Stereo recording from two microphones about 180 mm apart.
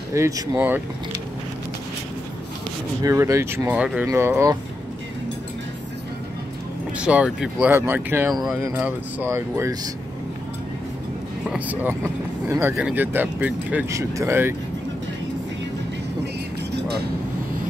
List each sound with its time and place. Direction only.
0.1 s speech: 15° right (ahead or behind)
3.0 s speech: 15° right (ahead or behind)
7.0 s speech: 5° right (ahead or behind)
11.4 s speech: 10° right (ahead or behind)
16.7 s vehicle: 65° right (ahead or behind)